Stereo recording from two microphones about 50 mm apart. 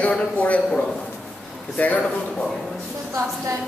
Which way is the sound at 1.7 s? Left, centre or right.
Left.